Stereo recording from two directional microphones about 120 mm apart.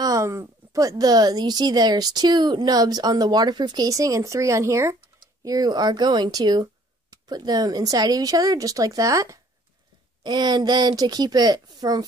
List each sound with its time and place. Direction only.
0.0 s speech: 25° right (ahead or behind)